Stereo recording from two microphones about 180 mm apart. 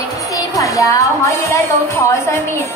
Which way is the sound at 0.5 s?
20° left (ahead or behind).